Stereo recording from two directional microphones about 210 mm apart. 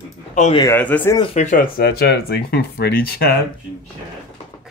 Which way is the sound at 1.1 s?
30° left (ahead or behind).